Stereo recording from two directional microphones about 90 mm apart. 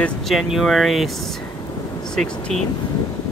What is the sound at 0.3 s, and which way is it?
Speech, 5° right (ahead or behind).